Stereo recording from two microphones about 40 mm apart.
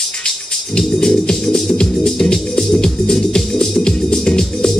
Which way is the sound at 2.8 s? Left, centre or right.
Centre.